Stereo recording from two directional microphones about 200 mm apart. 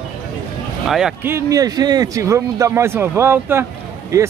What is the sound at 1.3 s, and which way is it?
Speech, 15° right (ahead or behind).